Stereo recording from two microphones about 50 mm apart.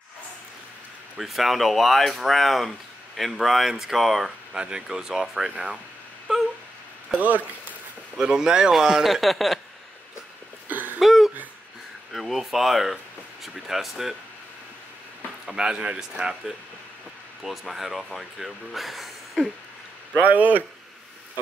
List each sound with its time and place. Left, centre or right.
1.1 s speech: centre
4.6 s a man's voice: centre
6.3 s a sound: centre
7.2 s a man's voice: right
8.2 s a man's voice: centre
10.7 s a sound: right
11.0 s a sound: centre
15.4 s a man's voice: centre
17.4 s speech: centre
20.2 s a man's voice: right